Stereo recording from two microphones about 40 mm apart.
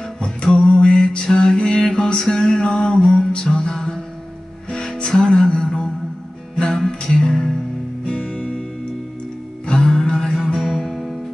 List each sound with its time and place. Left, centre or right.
0.2 s music: left
9.7 s music: centre